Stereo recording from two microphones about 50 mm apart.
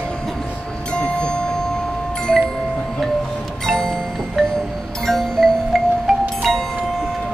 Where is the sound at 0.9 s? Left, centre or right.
Centre.